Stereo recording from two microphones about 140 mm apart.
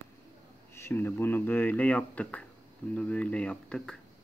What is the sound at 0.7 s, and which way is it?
Speech, 15° left (ahead or behind).